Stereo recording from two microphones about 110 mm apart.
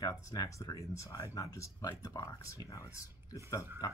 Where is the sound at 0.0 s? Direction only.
30° left (ahead or behind).